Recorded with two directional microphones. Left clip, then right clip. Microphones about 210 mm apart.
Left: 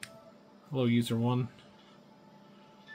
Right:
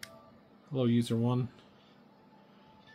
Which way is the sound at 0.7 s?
5° left (ahead or behind).